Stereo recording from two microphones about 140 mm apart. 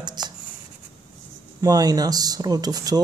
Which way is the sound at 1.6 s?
25° right (ahead or behind).